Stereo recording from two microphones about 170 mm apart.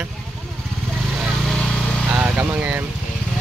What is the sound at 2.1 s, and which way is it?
Vehicle, 10° right (ahead or behind).